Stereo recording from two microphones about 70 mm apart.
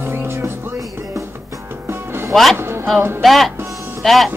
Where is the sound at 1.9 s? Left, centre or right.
Right.